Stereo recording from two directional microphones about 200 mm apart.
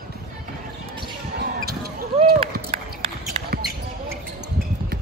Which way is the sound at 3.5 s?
50° right (ahead or behind).